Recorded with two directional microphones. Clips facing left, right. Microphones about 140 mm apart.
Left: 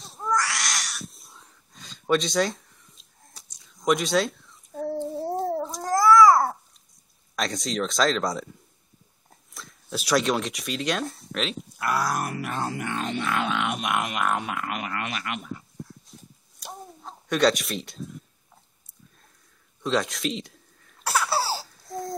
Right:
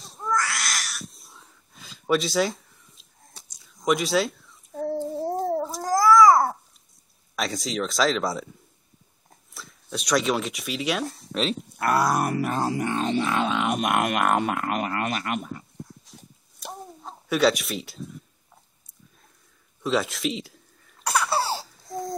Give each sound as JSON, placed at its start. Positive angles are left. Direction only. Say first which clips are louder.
{"t": 0.0, "sound": "cat", "louder": "even", "side_deg": 0}
{"t": 7.3, "sound": "speech", "louder": "even", "side_deg": 0}
{"t": 12.4, "sound": "music", "louder": "right 5 dB", "side_deg": -40}
{"t": 13.7, "sound": "speech", "louder": "right 4 dB", "side_deg": -50}
{"t": 16.2, "sound": "a sound", "louder": "right 4 dB", "side_deg": 0}
{"t": 19.8, "sound": "baby laughter", "louder": "right 1 dB", "side_deg": -5}